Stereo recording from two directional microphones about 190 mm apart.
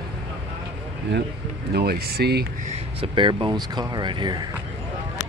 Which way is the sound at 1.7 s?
55° right (ahead or behind).